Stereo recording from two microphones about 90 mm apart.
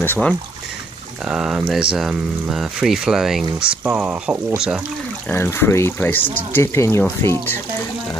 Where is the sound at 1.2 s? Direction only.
10° right (ahead or behind).